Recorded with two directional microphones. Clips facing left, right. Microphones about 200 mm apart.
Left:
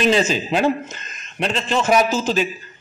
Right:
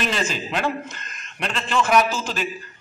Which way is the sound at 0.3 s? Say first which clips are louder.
Left 7 dB; 35° left (ahead or behind).